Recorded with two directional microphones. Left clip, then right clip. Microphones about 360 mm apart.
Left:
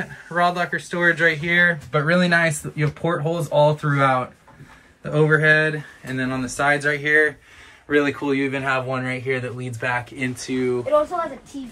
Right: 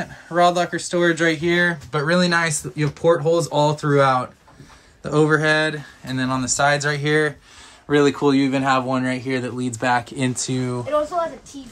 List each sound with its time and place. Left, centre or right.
0.0 s speech: centre